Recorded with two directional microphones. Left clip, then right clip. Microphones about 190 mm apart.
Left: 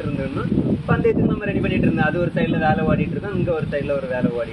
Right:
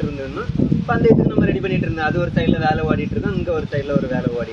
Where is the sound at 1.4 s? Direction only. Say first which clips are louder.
Right 1 dB; 15° right (ahead or behind).